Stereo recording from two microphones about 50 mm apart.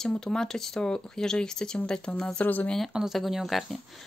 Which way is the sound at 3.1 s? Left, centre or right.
Centre.